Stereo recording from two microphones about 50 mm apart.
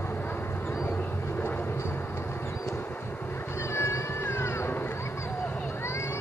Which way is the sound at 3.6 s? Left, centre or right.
Left.